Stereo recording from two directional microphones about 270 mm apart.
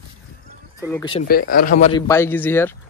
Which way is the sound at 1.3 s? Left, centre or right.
Left.